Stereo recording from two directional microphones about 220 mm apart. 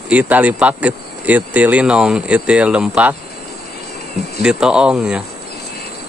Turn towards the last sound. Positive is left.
turn(degrees=-5)  # may be behind; listen again after turning